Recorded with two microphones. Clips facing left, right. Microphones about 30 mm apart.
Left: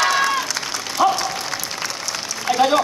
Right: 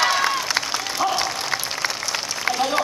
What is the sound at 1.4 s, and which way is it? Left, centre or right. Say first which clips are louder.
Applause: right 2 dB; centre.